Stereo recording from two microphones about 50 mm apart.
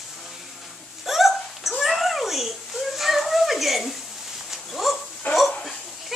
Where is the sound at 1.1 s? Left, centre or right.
Centre.